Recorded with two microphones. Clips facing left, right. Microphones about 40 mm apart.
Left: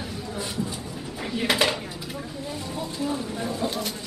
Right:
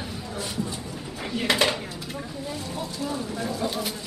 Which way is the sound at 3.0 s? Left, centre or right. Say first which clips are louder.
Left 1 dB; centre.